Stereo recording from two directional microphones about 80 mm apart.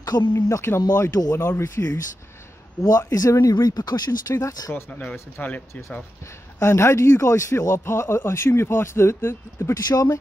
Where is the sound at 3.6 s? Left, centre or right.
Left.